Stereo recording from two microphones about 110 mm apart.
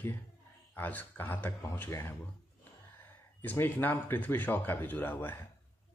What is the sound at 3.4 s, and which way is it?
Speech, 15° left (ahead or behind).